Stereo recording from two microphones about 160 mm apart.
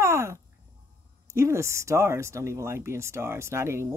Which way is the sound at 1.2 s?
15° right (ahead or behind).